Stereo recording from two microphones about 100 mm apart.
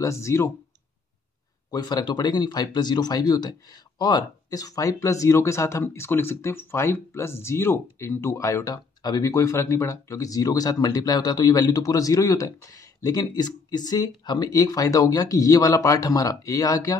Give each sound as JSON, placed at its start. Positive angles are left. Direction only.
{"t": 0.0, "sound": "speech", "side_deg": 30}
{"t": 1.7, "sound": "speech", "side_deg": 40}